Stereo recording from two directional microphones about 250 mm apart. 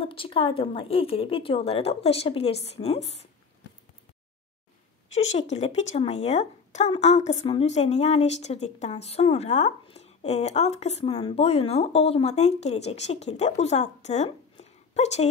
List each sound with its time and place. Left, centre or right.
0.0 s a woman's voice: left
5.1 s a woman's voice: left